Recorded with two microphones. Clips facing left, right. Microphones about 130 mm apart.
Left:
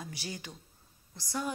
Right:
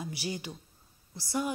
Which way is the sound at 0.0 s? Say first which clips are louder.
Right 5 dB; 10° right (ahead or behind).